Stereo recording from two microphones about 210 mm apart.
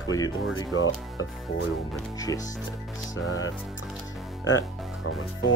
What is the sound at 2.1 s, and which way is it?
Speech, 15° left (ahead or behind).